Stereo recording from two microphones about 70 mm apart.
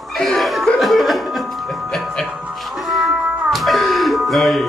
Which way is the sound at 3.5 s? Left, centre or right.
Centre.